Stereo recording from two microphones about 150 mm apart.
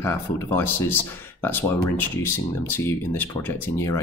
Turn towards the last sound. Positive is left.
turn(degrees=15)  # may be behind; listen again after turning